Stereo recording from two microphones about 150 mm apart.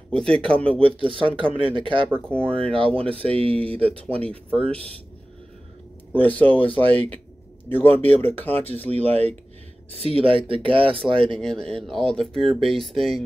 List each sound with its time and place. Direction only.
0.1 s speech: 5° left (ahead or behind)
0.7 s speech: 35° right (ahead or behind)
2.2 s speech: 5° left (ahead or behind)
2.6 s speech: 35° right (ahead or behind)
6.1 s speech: 10° left (ahead or behind)
8.8 s speech: 45° right (ahead or behind)
11.3 s speech: 5° left (ahead or behind)